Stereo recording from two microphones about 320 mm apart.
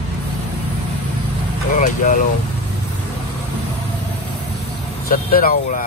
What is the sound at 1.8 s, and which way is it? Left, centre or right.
Speech, left.